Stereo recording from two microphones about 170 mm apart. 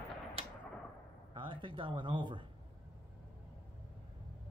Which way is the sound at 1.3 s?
30° right (ahead or behind).